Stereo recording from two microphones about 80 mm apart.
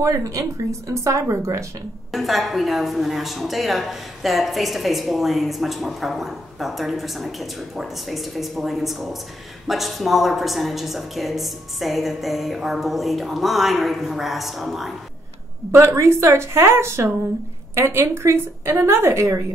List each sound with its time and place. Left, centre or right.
0.0 s speech: right
2.1 s a woman's voice: centre
15.7 s speech: right